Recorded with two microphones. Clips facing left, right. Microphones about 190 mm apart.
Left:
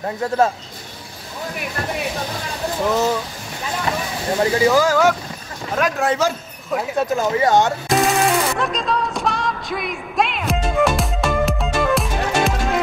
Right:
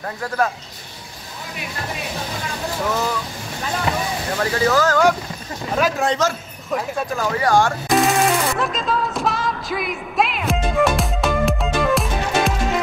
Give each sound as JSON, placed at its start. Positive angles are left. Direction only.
{"t": 2.8, "sound": "speech", "side_deg": 20}
{"t": 4.4, "sound": "a man's voice", "side_deg": 20}
{"t": 7.2, "sound": "speech", "side_deg": 20}
{"t": 7.9, "sound": "music", "side_deg": 0}